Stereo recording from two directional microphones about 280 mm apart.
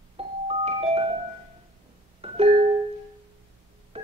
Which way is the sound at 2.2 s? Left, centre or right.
Centre.